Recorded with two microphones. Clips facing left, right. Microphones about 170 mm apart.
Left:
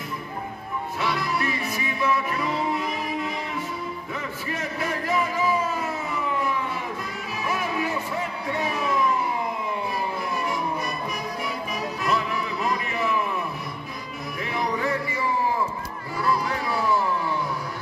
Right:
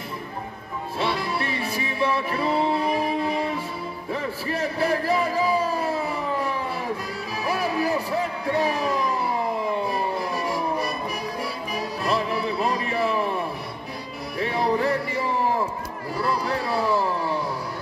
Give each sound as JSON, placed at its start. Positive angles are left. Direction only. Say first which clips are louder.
{"t": 0.9, "sound": "music", "louder": "right 2 dB", "side_deg": -30}
{"t": 10.3, "sound": "music", "louder": "right 2 dB", "side_deg": -35}
{"t": 12.0, "sound": "music", "louder": "right 2 dB", "side_deg": -30}
{"t": 16.2, "sound": "music", "louder": "even", "side_deg": -35}